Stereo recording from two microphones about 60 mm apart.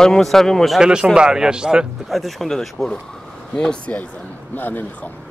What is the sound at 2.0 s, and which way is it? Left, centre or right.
Speech, centre.